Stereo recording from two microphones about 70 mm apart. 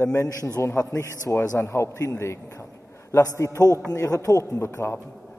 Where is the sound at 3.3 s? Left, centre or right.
Left.